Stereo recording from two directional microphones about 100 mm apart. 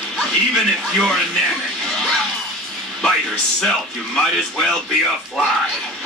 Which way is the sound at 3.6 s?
5° left (ahead or behind).